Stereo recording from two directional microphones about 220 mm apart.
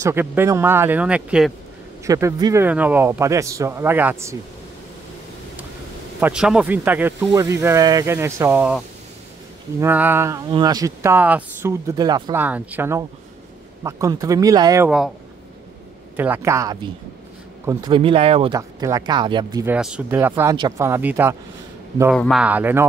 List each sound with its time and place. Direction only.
0.0 s speech: 10° right (ahead or behind)
6.1 s speech: 5° right (ahead or behind)
16.2 s speech: 10° right (ahead or behind)
18.6 s speech: 15° right (ahead or behind)